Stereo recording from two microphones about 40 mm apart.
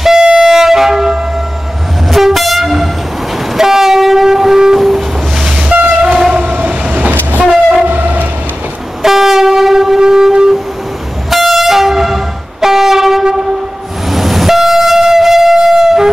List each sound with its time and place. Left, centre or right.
0.2 s music: centre
2.0 s train: centre
5.7 s train: right
9.0 s train: centre
11.2 s train: centre
14.1 s train: centre